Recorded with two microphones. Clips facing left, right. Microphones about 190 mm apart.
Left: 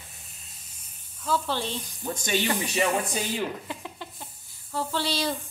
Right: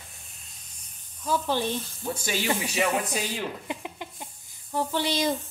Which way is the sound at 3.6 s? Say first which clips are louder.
Right 2 dB; 15° right (ahead or behind).